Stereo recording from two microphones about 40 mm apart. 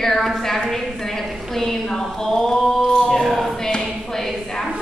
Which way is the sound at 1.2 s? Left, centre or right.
Centre.